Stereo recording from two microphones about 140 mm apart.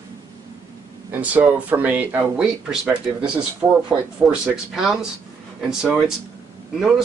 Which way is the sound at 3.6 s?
20° right (ahead or behind).